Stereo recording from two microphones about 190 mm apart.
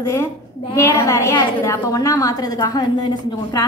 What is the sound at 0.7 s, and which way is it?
A woman's voice, 15° left (ahead or behind).